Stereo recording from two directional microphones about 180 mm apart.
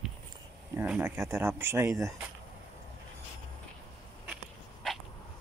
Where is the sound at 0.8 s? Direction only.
10° right (ahead or behind).